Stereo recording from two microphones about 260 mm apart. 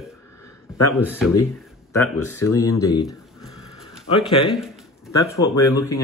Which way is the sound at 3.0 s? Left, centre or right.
Centre.